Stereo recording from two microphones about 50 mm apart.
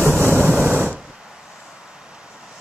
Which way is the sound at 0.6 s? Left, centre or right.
Right.